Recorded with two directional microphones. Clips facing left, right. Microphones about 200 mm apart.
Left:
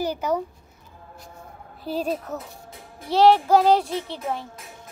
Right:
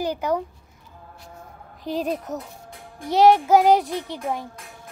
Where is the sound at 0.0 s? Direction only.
15° right (ahead or behind).